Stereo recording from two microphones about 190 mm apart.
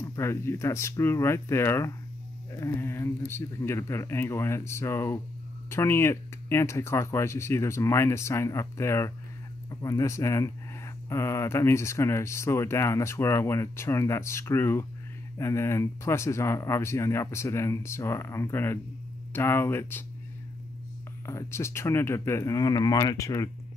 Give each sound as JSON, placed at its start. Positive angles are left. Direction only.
{"t": 0.0, "sound": "speech", "side_deg": 15}
{"t": 21.3, "sound": "speech", "side_deg": 15}